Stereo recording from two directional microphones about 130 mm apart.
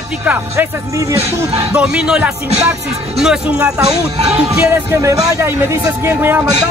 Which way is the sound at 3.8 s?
55° right (ahead or behind).